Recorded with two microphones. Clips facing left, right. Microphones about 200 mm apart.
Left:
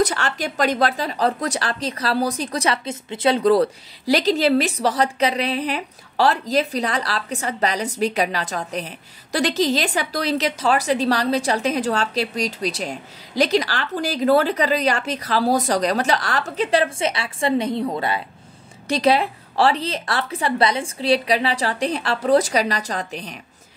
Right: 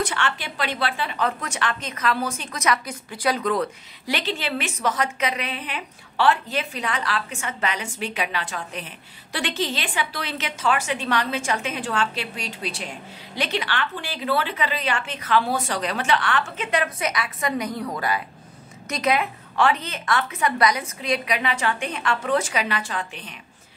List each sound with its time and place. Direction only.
0.0 s speech: 40° left (ahead or behind)